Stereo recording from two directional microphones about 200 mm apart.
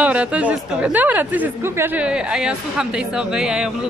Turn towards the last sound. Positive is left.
turn(degrees=-5)  # may be behind; listen again after turning